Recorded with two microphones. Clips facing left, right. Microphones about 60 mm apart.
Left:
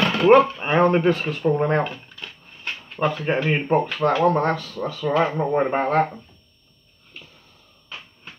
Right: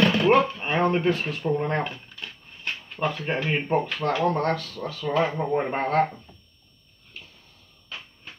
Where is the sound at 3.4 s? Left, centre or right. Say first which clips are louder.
Left 3 dB; left.